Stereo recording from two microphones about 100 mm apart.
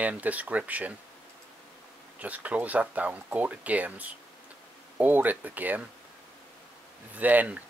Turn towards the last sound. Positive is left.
turn(degrees=-15)  # may be behind; listen again after turning